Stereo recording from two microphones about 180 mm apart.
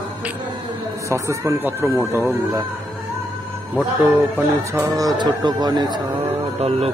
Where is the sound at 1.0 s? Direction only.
15° right (ahead or behind).